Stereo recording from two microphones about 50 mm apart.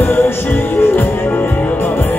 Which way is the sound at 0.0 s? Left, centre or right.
Left.